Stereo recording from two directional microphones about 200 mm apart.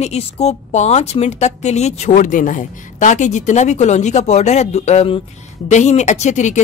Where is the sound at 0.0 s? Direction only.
30° left (ahead or behind).